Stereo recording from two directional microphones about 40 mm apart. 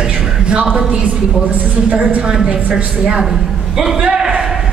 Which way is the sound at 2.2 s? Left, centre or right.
Centre.